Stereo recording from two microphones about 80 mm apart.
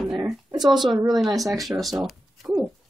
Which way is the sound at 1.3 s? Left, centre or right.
Right.